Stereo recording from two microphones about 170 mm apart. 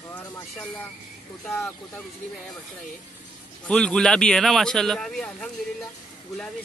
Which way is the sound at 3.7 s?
5° left (ahead or behind).